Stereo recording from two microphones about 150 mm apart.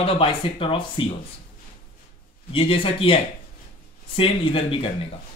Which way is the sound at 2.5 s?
35° left (ahead or behind).